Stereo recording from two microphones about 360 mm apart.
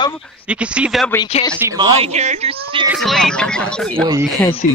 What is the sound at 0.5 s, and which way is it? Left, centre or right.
Speech, centre.